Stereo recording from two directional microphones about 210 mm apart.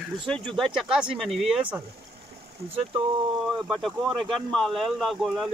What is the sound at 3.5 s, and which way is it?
Speech, centre (ahead or behind).